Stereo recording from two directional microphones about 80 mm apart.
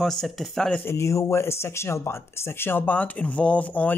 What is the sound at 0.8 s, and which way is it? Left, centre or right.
Speech, left.